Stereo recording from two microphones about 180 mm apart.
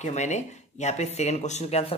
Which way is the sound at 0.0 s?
40° left (ahead or behind).